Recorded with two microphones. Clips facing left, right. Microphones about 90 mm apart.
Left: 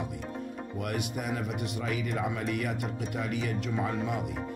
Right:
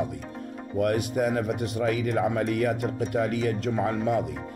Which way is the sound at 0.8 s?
40° right (ahead or behind).